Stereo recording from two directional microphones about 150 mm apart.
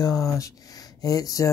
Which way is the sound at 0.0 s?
25° left (ahead or behind).